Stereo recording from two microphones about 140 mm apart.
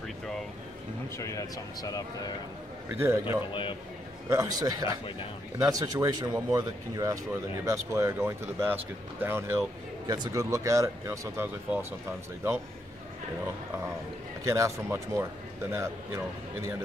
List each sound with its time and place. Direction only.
1.1 s speech: 25° left (ahead or behind)
3.0 s speech: 15° right (ahead or behind)
10.0 s speech: 30° right (ahead or behind)
14.4 s speech: 20° right (ahead or behind)